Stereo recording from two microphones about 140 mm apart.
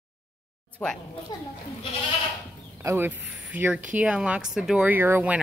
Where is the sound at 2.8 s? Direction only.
15° right (ahead or behind).